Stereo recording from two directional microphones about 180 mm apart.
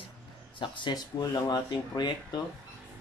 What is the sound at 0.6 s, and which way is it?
Speech, 25° left (ahead or behind).